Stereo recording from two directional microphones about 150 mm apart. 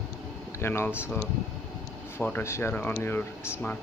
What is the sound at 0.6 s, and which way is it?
Speech, 15° left (ahead or behind).